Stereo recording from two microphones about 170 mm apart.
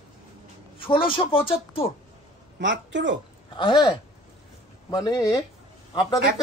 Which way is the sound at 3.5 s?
25° left (ahead or behind).